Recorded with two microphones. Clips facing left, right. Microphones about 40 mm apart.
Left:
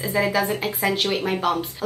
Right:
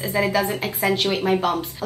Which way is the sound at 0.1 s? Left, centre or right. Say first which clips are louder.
Even; centre.